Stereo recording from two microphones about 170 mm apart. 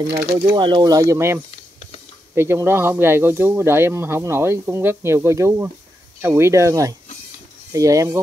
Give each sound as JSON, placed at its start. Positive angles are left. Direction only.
{"t": 0.6, "sound": "speech", "side_deg": -30}